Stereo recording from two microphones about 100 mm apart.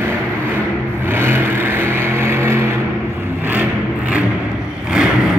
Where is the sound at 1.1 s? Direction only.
20° right (ahead or behind).